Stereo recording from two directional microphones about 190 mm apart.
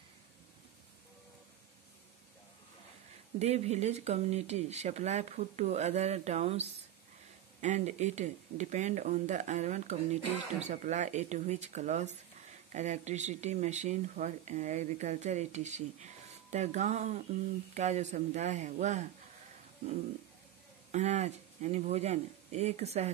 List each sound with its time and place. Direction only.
3.3 s speech: 35° right (ahead or behind)
20.9 s speech: 35° right (ahead or behind)